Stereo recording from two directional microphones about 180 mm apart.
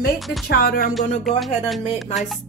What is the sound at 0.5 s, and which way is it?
Speech, 60° left (ahead or behind).